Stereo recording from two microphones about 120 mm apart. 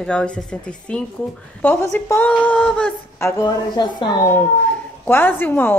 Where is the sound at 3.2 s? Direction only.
30° left (ahead or behind).